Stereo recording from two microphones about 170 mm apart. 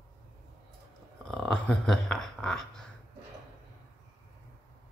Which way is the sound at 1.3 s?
5° left (ahead or behind).